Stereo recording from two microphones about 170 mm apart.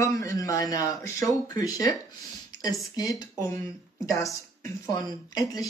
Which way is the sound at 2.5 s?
25° left (ahead or behind).